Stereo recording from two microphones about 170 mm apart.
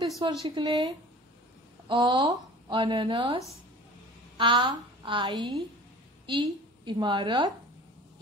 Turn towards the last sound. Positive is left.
turn(degrees=-25)  # may be behind; listen again after turning